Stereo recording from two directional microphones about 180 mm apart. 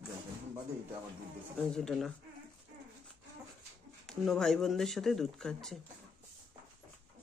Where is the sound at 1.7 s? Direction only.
5° left (ahead or behind).